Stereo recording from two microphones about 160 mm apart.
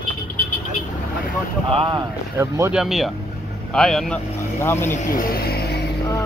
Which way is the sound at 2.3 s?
20° right (ahead or behind).